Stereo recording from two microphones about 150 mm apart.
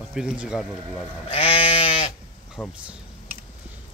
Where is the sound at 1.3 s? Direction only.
40° left (ahead or behind).